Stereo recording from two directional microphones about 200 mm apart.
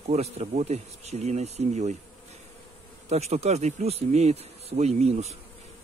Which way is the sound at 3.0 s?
35° right (ahead or behind).